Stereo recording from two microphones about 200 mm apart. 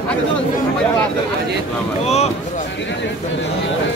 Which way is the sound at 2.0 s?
35° left (ahead or behind).